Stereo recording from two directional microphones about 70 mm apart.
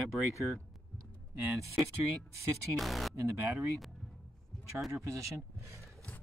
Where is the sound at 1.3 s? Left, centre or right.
Right.